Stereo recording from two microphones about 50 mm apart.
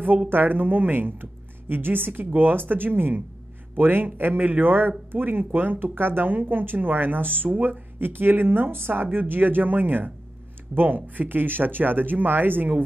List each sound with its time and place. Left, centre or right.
0.3 s a man's voice: right